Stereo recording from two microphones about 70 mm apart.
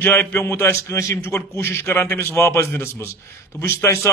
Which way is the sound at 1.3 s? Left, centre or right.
Left.